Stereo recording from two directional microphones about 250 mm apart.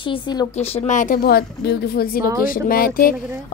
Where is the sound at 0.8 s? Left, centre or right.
Left.